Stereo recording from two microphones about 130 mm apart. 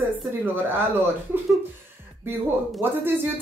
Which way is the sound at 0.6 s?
15° right (ahead or behind).